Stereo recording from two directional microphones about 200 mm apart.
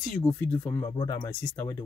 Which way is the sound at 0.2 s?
10° left (ahead or behind).